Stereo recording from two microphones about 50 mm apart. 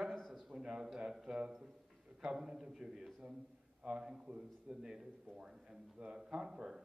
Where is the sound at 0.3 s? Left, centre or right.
Centre.